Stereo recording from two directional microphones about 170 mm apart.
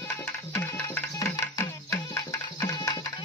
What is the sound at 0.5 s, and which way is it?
Music, 15° left (ahead or behind).